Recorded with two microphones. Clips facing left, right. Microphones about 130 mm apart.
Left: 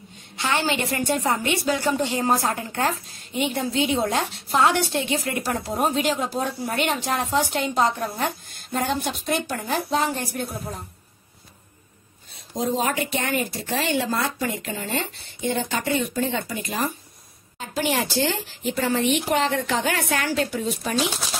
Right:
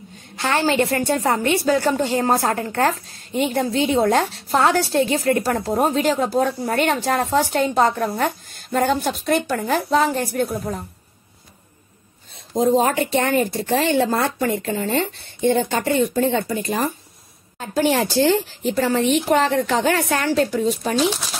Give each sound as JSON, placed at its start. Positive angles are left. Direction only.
{"t": 0.4, "sound": "a woman's voice", "side_deg": -40}
{"t": 6.4, "sound": "a woman's voice", "side_deg": -50}
{"t": 12.5, "sound": "a woman's voice", "side_deg": -45}